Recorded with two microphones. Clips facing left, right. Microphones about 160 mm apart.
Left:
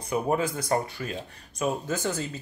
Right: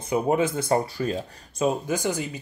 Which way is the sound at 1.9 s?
15° right (ahead or behind).